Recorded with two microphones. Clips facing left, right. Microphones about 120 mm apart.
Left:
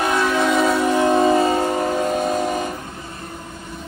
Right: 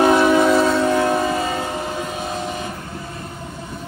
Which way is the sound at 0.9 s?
20° left (ahead or behind).